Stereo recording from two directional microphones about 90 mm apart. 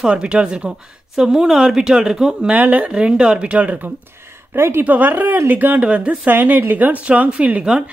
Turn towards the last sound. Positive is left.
turn(degrees=-15)  # may be behind; listen again after turning